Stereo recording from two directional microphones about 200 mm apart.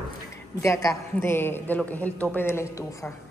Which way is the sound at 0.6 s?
15° left (ahead or behind).